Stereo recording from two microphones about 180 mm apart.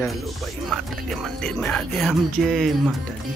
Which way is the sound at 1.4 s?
5° left (ahead or behind).